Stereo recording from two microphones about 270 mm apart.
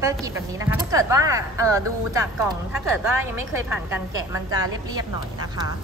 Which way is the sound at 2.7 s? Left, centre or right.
Centre.